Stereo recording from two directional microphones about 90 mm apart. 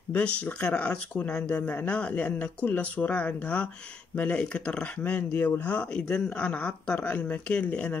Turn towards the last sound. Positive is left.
turn(degrees=15)  # may be behind; listen again after turning